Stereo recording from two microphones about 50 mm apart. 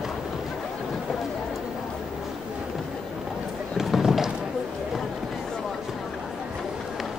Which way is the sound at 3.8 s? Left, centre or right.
Centre.